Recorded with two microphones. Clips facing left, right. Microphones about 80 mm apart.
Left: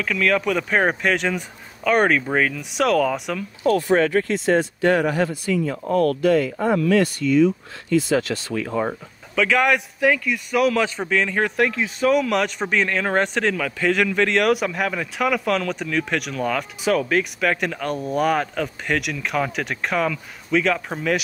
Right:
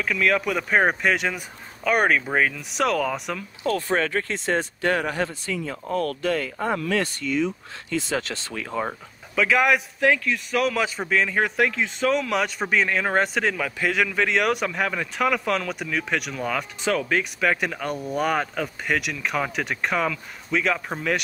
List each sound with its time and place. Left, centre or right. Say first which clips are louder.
0.0 s speech: left 2 dB; centre
3.9 s speech: left 6 dB; left
6.4 s speech: left 6 dB; right
8.5 s speech: left 4 dB; left
9.3 s speech: left 1 dB; centre